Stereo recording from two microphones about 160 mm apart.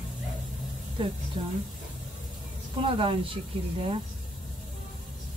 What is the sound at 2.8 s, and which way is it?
Speech, 35° right (ahead or behind).